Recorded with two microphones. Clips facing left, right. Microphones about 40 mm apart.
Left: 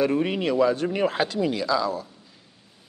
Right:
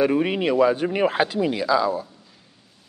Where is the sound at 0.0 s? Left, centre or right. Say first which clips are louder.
Right 3 dB; centre.